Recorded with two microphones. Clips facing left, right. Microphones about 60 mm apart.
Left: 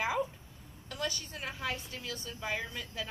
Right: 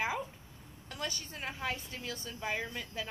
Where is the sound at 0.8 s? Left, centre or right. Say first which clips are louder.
Left 3 dB; right.